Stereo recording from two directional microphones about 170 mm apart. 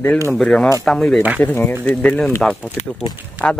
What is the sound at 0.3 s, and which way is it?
Speech, 5° left (ahead or behind).